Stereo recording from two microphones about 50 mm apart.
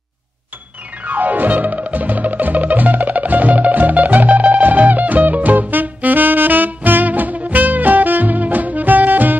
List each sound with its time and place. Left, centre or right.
1.0 s music: right